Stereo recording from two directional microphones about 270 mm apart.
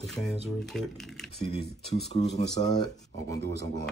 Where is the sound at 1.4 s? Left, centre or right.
Left.